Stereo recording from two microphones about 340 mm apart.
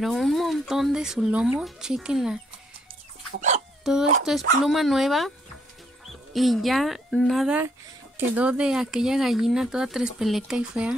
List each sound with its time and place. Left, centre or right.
0.0 s speech: centre
3.3 s speech: right
3.9 s speech: centre
6.3 s speech: centre